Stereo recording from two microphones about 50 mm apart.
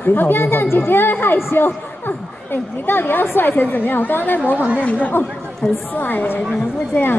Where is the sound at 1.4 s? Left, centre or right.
Left.